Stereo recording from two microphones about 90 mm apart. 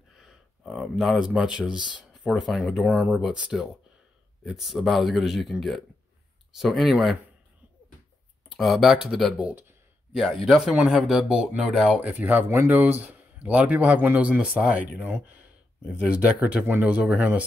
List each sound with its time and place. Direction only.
0.2 s speech: 5° right (ahead or behind)
8.5 s speech: centre (ahead or behind)
12.1 s a man's voice: 20° right (ahead or behind)